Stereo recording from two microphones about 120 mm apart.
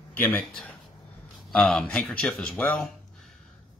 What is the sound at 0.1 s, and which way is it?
Speech, 15° left (ahead or behind).